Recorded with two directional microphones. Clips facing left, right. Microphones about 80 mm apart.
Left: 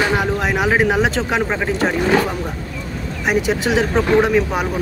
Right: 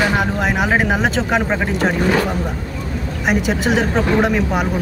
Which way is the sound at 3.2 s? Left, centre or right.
Centre.